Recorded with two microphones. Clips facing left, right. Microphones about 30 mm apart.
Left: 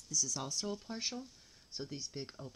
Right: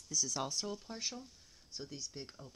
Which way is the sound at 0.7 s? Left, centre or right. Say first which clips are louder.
Left 2 dB; centre.